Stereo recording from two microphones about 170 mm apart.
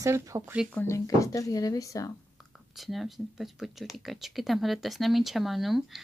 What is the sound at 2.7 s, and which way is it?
Speech, centre (ahead or behind).